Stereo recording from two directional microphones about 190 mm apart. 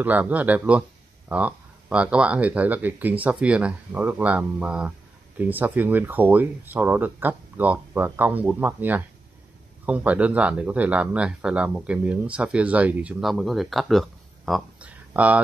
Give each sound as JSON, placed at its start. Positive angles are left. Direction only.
{"t": 0.0, "sound": "speech", "side_deg": -10}